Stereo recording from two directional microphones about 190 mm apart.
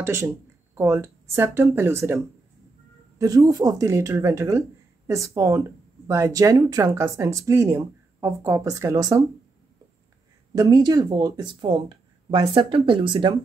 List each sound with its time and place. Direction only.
0.0 s speech: 15° right (ahead or behind)
10.5 s speech: 20° right (ahead or behind)